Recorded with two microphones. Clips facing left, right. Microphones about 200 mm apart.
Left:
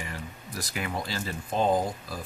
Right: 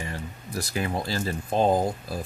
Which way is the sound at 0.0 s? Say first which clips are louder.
Right 3 dB; 30° right (ahead or behind).